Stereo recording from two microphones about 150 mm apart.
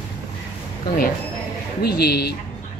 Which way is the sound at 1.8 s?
90° left.